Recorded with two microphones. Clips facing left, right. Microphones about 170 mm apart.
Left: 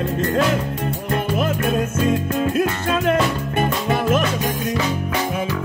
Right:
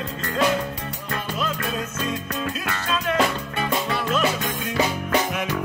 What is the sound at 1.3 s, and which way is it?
Music, 55° left (ahead or behind).